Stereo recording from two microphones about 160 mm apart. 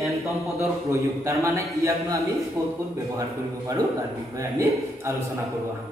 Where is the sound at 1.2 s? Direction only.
20° right (ahead or behind).